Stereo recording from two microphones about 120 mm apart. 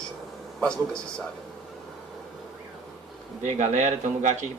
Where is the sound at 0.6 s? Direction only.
5° left (ahead or behind).